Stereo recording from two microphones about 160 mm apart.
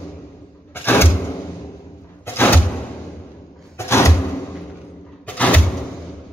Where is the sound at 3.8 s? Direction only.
15° left (ahead or behind).